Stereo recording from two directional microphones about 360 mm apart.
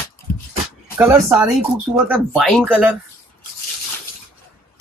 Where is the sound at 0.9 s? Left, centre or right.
Centre.